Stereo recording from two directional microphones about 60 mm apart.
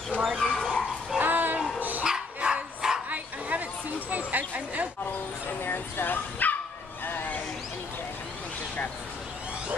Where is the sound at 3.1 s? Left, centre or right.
Right.